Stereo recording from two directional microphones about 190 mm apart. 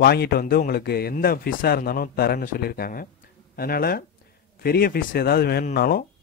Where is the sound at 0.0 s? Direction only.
55° left (ahead or behind).